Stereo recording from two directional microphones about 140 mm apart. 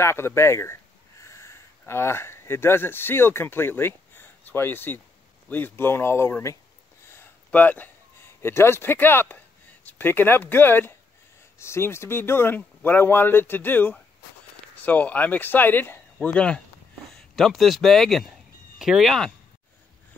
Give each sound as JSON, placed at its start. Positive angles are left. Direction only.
{"t": 0.0, "sound": "speech", "side_deg": 20}
{"t": 7.1, "sound": "a sound", "side_deg": 15}
{"t": 8.4, "sound": "speech", "side_deg": 20}